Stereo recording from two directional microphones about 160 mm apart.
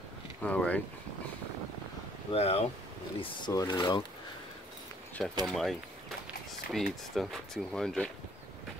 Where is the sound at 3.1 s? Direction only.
25° left (ahead or behind).